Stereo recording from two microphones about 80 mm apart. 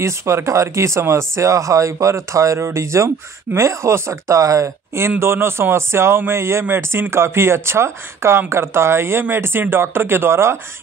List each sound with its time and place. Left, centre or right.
0.0 s speech: right